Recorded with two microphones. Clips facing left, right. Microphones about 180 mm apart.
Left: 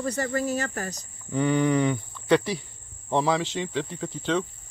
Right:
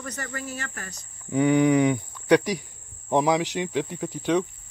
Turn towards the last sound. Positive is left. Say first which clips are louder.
# right 3 dB
turn(degrees=-10)  # may be behind; listen again after turning